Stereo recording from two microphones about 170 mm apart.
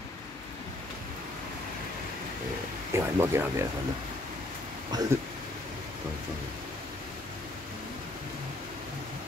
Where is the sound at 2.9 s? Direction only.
15° right (ahead or behind).